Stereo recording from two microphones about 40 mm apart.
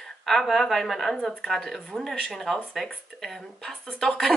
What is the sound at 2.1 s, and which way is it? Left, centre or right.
Speech, centre.